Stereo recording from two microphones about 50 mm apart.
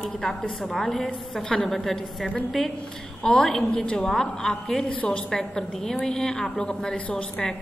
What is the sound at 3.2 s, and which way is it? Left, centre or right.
A woman's voice, centre.